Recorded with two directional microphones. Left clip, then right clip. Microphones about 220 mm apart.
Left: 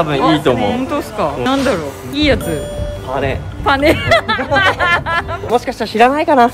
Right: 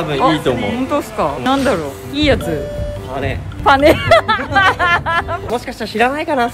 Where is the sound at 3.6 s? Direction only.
10° right (ahead or behind).